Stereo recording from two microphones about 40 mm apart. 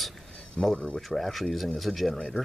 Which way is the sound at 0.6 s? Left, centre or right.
Centre.